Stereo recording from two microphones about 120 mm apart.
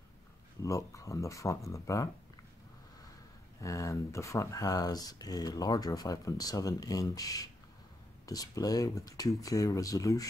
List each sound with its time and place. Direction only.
0.6 s speech: 25° left (ahead or behind)
3.6 s speech: 25° left (ahead or behind)